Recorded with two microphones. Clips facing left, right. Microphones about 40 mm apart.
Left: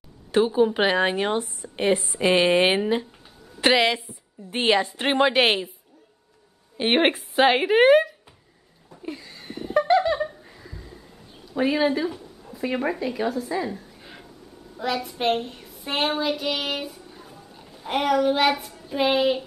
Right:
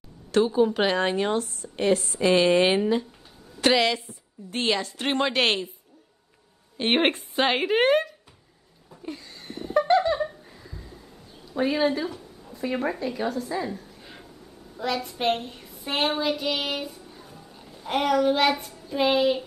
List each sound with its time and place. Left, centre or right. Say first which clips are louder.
0.3 s a woman's voice: left 1 dB; centre
6.8 s a woman's voice: left 2 dB; centre
8.9 s a sound: left 2 dB; centre
11.6 s a woman's voice: left 2 dB; centre